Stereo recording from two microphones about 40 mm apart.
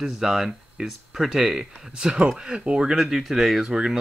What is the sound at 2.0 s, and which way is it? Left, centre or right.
Speech, centre.